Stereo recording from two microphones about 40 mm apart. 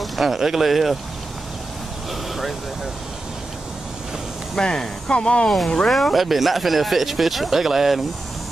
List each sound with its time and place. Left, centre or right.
0.0 s speech: centre
4.6 s speech: centre
5.9 s speech: centre